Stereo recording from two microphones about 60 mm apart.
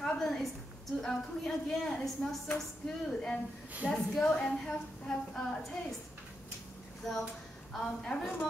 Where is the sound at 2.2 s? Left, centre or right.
Left.